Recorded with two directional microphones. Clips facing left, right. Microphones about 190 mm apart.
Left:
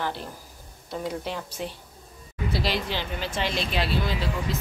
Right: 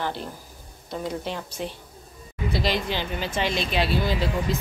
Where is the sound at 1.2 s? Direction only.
5° left (ahead or behind).